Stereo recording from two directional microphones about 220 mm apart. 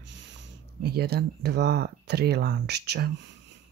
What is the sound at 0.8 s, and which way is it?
Speech, 45° right (ahead or behind).